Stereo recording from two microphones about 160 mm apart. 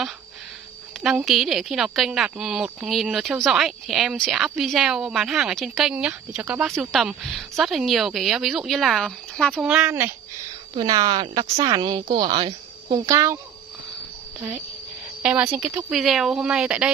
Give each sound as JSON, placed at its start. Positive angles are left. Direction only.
{"t": 1.0, "sound": "speech", "side_deg": 0}
{"t": 9.7, "sound": "speech", "side_deg": -5}
{"t": 10.8, "sound": "a woman's voice", "side_deg": -25}
{"t": 13.1, "sound": "a woman's voice", "side_deg": -20}
{"t": 15.2, "sound": "speech", "side_deg": -10}